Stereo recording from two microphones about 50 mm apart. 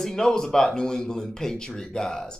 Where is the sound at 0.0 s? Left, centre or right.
Centre.